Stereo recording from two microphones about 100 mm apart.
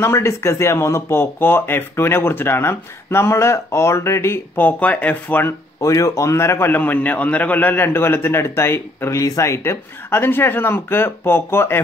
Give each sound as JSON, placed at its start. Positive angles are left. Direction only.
{"t": 0.0, "sound": "a man's voice", "side_deg": 25}
{"t": 5.8, "sound": "a man's voice", "side_deg": 30}